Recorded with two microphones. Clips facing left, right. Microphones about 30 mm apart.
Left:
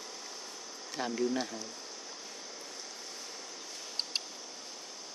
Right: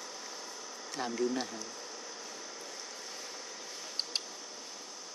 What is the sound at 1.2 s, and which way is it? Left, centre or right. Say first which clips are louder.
Speech: left 1 dB; centre.